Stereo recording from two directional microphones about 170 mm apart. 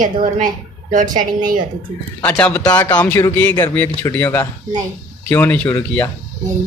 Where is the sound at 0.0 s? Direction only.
50° right (ahead or behind).